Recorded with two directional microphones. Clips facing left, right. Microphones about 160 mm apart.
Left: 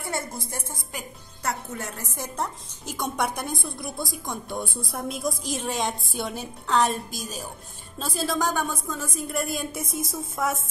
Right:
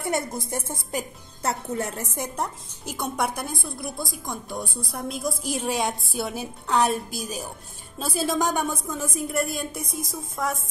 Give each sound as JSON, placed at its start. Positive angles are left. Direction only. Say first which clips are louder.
{"t": 0.0, "sound": "a woman's voice", "louder": "right 5 dB", "side_deg": -20}
{"t": 2.3, "sound": "a woman's voice", "louder": "right 1 dB", "side_deg": -10}
{"t": 9.4, "sound": "speech", "louder": "even", "side_deg": 0}